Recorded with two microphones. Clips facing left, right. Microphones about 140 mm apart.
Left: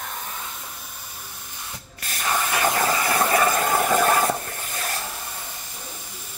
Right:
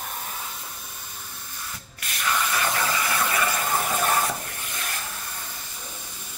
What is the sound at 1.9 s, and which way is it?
Spray, 40° left (ahead or behind).